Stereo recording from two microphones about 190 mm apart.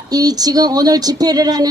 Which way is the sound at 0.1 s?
20° right (ahead or behind).